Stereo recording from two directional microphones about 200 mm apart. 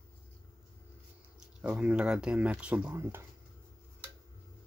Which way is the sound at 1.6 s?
5° right (ahead or behind).